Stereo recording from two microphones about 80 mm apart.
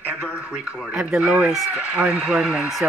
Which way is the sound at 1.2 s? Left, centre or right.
Centre.